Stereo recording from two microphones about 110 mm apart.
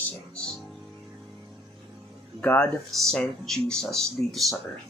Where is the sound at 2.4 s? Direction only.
10° left (ahead or behind).